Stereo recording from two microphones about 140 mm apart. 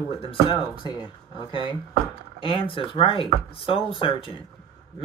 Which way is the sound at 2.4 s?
40° left (ahead or behind).